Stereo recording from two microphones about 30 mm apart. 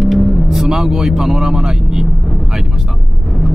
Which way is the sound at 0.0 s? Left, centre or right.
Centre.